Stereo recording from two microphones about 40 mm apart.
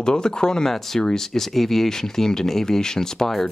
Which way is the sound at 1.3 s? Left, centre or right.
Centre.